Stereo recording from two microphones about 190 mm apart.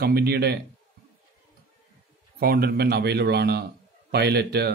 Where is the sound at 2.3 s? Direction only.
55° right (ahead or behind).